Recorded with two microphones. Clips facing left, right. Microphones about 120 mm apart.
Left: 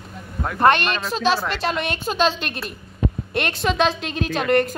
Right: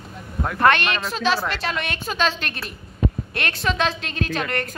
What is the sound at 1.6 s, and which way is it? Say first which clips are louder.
A woman's voice: left 3 dB; 25° left (ahead or behind).